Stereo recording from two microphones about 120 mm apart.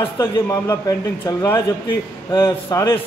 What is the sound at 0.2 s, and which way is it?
A man's voice, 25° left (ahead or behind).